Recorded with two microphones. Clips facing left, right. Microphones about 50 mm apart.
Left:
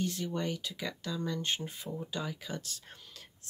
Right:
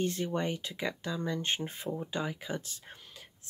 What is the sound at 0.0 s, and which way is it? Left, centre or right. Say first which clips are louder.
Speech: right 3 dB; right.